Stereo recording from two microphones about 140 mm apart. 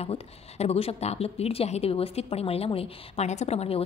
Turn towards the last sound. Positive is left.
turn(degrees=45)  # may be behind; listen again after turning